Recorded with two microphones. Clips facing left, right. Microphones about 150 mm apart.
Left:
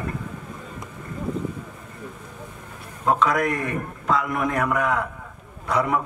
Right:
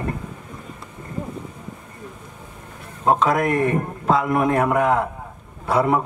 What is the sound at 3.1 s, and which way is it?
A man's voice, 25° right (ahead or behind).